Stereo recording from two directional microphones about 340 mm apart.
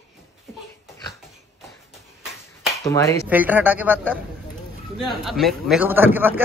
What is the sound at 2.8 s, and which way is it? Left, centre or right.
Speech, centre.